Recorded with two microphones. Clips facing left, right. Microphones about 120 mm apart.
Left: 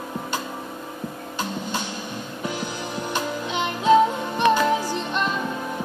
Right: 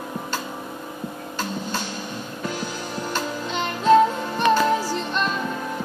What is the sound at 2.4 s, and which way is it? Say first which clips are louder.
Music: even; 15° left (ahead or behind).